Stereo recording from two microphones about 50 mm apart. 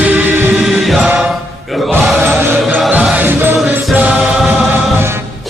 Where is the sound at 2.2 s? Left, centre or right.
Right.